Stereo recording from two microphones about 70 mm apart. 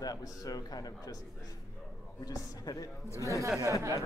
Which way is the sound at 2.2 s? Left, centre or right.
Left.